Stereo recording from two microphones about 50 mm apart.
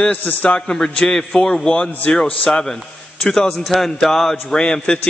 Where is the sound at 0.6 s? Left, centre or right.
Centre.